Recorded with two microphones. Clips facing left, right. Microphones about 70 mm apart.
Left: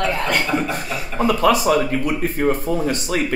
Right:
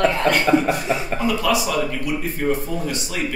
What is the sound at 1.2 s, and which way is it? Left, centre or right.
A man's voice, left.